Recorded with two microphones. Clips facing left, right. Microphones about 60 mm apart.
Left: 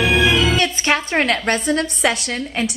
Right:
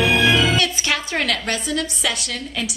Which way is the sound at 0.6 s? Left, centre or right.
Left.